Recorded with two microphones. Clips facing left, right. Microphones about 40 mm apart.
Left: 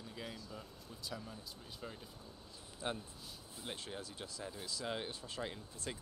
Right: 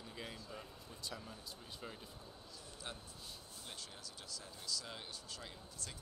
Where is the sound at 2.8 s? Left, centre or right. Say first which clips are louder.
Left 9 dB; left.